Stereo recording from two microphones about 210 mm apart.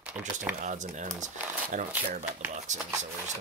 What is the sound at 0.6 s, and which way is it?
Speech, 40° right (ahead or behind).